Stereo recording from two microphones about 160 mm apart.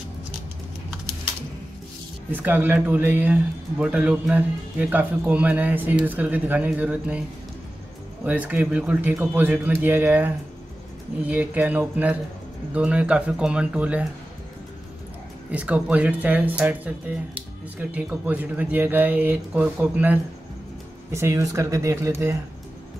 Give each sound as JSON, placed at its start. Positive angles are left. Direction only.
{"t": 2.3, "sound": "a man's voice", "side_deg": -10}
{"t": 8.3, "sound": "a man's voice", "side_deg": -10}
{"t": 15.5, "sound": "a man's voice", "side_deg": -10}